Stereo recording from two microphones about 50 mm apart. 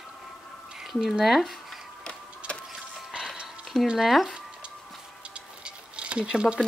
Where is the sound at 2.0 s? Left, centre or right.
Centre.